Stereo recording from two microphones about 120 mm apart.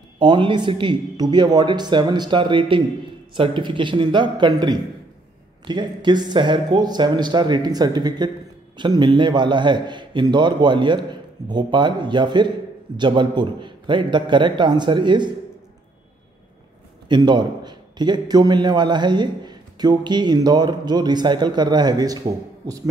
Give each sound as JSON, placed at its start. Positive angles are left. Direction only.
{"t": 0.2, "sound": "a man's voice", "side_deg": -40}
{"t": 17.1, "sound": "a man's voice", "side_deg": -40}